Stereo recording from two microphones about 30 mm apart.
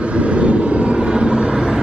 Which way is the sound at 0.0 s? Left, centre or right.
Right.